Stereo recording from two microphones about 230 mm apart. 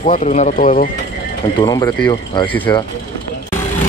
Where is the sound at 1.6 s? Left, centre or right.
Centre.